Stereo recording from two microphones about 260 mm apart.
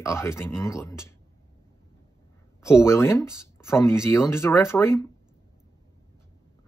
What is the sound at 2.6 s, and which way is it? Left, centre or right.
Speech, centre.